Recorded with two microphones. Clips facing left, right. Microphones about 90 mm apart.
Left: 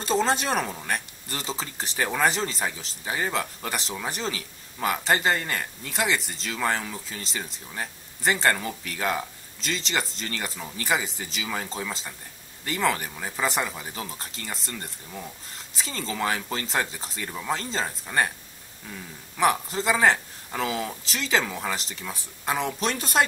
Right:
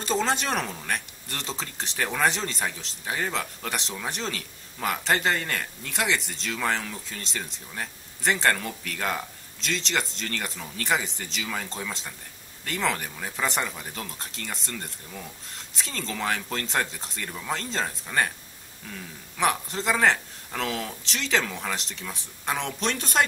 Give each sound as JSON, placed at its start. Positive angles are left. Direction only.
{"t": 0.0, "sound": "speech", "side_deg": 0}